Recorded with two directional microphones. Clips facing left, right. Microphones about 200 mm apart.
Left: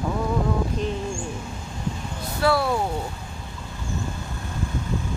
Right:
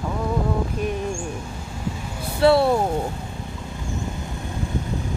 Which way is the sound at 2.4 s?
25° right (ahead or behind).